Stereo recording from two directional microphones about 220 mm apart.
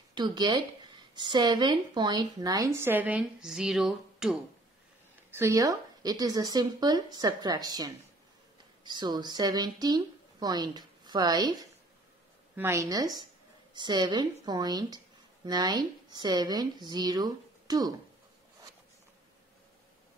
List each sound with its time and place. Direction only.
0.1 s a woman's voice: 20° right (ahead or behind); by 4.4 s centre (ahead or behind)
5.3 s a woman's voice: 15° right (ahead or behind)